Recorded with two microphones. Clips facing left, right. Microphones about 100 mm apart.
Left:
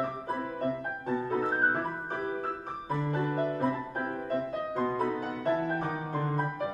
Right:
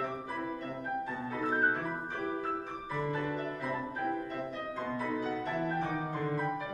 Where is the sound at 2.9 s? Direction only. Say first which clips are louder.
Left 4 dB; 45° left (ahead or behind).